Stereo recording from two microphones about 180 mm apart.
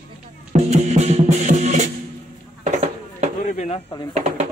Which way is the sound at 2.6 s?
35° right (ahead or behind).